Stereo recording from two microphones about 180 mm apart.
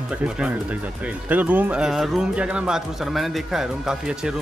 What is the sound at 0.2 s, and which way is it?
A man's voice, 5° right (ahead or behind).